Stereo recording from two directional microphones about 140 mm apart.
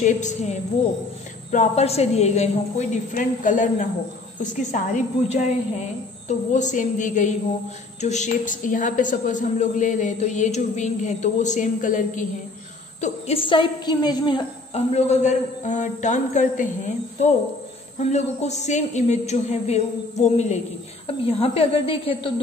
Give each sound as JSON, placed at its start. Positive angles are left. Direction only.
{"t": 0.0, "sound": "a woman's voice", "side_deg": 55}
{"t": 13.0, "sound": "a woman's voice", "side_deg": 40}
{"t": 21.1, "sound": "a woman's voice", "side_deg": 45}